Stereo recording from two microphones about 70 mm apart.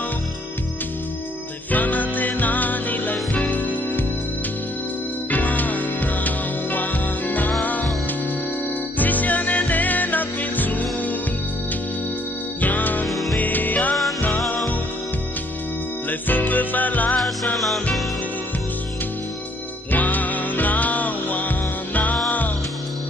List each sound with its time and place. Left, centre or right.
1.7 s music: left
5.3 s music: left
8.9 s music: left
12.6 s music: left
16.1 s music: left
19.9 s music: left